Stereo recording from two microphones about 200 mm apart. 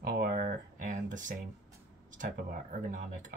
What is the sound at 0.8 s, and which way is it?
Speech, 40° right (ahead or behind).